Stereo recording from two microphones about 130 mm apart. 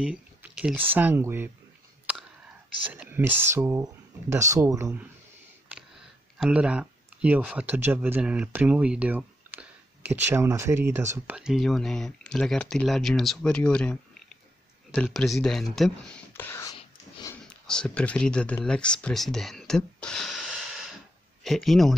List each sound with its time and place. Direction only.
0.0 s speech: 5° right (ahead or behind)
2.9 s speech: 15° right (ahead or behind)
6.3 s speech: 5° right (ahead or behind)
11.3 s speech: 5° right (ahead or behind)
15.0 s speech: centre (ahead or behind); by 16.6 s 15° left (ahead or behind)
17.5 s speech: 5° left (ahead or behind)
21.5 s speech: centre (ahead or behind)